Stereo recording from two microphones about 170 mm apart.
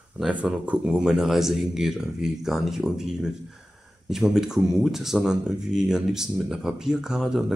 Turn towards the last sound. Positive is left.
turn(degrees=-5)  # may be behind; listen again after turning